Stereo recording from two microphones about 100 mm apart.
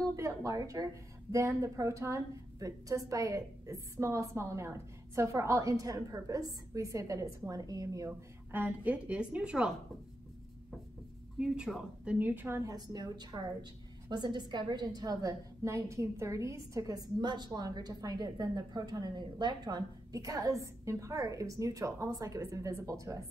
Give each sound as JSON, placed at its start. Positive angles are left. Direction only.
{"t": 0.0, "sound": "a woman's voice", "side_deg": -30}
{"t": 8.5, "sound": "a woman's voice", "side_deg": -20}
{"t": 11.3, "sound": "a woman's voice", "side_deg": -10}
{"t": 12.6, "sound": "a woman's voice", "side_deg": -40}